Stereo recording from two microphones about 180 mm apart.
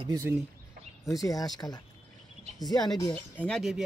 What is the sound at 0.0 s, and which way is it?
Speech, 20° right (ahead or behind).